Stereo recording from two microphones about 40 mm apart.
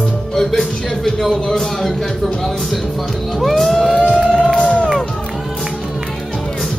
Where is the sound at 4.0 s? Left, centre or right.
Right.